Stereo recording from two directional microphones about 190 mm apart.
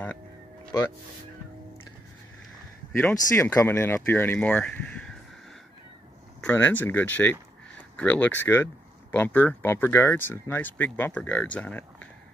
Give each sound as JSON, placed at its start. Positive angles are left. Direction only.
{"t": 3.0, "sound": "speech", "side_deg": 10}
{"t": 6.4, "sound": "speech", "side_deg": 10}